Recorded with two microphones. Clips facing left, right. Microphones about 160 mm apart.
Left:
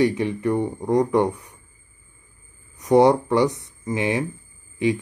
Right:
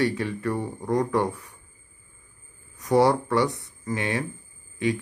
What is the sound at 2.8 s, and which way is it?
Speech, 20° left (ahead or behind).